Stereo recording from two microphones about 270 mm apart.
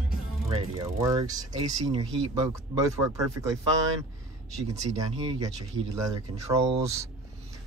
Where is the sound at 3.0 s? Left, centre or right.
Centre.